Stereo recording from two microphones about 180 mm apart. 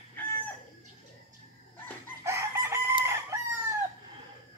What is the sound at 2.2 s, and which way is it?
Chicken, 15° right (ahead or behind).